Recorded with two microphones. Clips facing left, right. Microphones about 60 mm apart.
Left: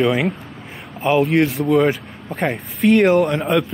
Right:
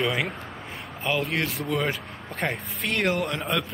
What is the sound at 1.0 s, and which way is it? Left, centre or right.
Speech, centre.